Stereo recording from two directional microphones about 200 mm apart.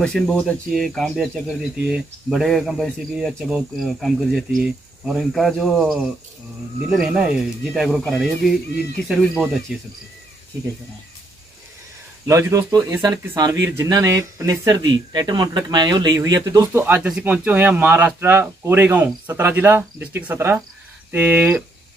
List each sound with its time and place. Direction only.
0.0 s speech: 5° left (ahead or behind)
12.3 s speech: 15° right (ahead or behind)